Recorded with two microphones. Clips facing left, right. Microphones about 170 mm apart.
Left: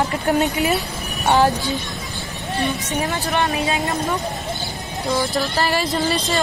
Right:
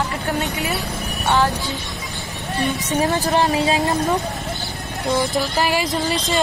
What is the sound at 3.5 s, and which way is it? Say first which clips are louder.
Speech: right 3 dB; 25° right (ahead or behind).